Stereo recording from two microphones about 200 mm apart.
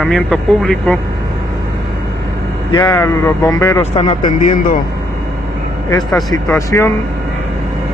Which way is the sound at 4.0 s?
30° left (ahead or behind).